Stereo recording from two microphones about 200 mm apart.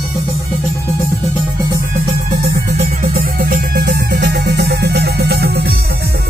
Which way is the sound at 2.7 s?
45° right (ahead or behind).